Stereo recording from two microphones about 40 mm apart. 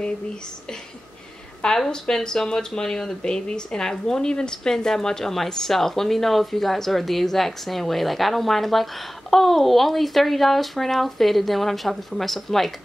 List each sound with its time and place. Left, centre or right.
1.9 s a woman's voice: centre
3.2 s a woman's voice: left; by 12.7 s centre